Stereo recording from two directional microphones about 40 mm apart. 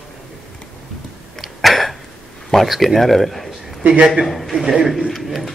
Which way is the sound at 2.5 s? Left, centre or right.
Centre.